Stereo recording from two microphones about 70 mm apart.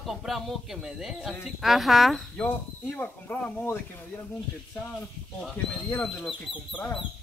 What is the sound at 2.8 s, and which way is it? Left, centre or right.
Speech, left.